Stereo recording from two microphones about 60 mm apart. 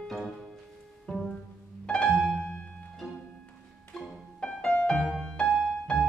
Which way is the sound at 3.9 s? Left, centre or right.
Centre.